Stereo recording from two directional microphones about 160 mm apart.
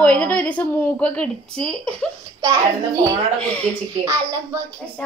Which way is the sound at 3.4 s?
10° left (ahead or behind).